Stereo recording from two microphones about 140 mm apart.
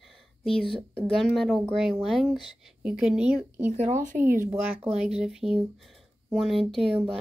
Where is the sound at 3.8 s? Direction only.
65° right (ahead or behind).